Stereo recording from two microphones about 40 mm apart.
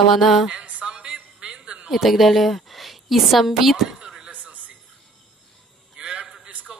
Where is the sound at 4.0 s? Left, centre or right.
Centre.